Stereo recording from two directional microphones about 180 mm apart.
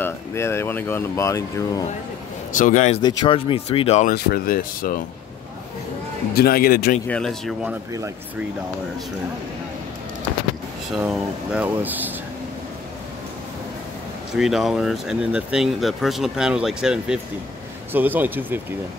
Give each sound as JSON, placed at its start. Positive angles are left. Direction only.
{"t": 0.0, "sound": "speech", "side_deg": 15}
{"t": 2.5, "sound": "speech", "side_deg": 45}
{"t": 3.0, "sound": "speech", "side_deg": 25}
{"t": 4.1, "sound": "speech", "side_deg": 55}
{"t": 6.3, "sound": "speech", "side_deg": 55}
{"t": 7.1, "sound": "speech", "side_deg": 5}
{"t": 10.9, "sound": "speech", "side_deg": -5}
{"t": 14.3, "sound": "speech", "side_deg": 0}